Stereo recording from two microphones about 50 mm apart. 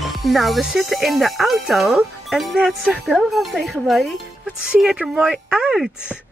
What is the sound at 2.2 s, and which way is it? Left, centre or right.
Speech, centre.